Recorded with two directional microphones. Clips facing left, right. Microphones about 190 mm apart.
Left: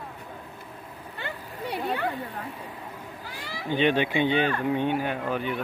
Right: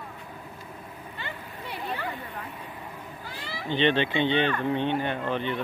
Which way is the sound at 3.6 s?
10° left (ahead or behind).